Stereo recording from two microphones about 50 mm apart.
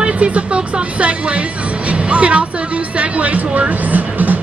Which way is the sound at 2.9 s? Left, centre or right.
Right.